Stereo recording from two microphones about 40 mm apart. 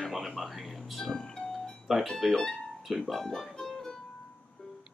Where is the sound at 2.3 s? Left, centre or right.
Centre.